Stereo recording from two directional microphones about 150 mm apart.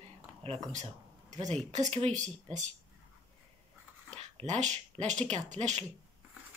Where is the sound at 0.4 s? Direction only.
50° right (ahead or behind).